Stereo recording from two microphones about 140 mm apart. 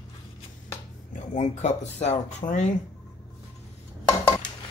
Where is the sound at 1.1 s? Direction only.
60° left (ahead or behind).